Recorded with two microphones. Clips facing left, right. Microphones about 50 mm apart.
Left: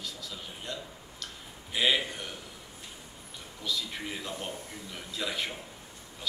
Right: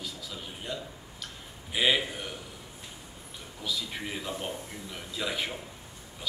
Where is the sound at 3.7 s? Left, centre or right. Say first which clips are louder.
Even; centre.